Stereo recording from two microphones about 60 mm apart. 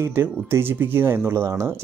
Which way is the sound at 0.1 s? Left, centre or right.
Right.